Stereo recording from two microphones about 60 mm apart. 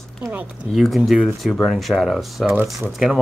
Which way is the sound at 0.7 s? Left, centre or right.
Centre.